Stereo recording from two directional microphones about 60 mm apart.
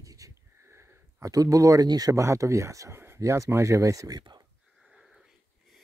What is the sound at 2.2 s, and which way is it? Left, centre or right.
Speech, right.